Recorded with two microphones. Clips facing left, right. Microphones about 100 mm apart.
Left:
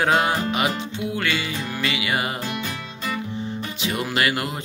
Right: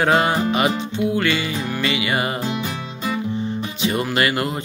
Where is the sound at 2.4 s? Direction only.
15° right (ahead or behind).